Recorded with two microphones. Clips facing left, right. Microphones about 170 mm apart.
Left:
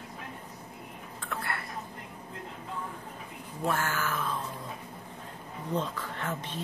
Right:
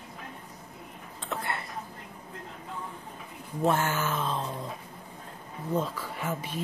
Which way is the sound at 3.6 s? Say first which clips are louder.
Right 4 dB; 20° right (ahead or behind).